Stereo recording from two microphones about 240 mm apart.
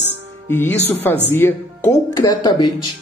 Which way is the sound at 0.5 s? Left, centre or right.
Centre.